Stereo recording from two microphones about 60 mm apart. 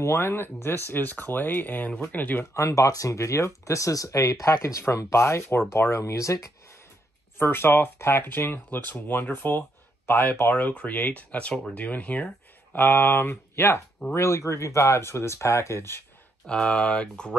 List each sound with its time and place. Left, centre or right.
0.0 s speech: left
2.5 s speech: left
7.3 s speech: left
14.1 s speech: left
16.4 s speech: centre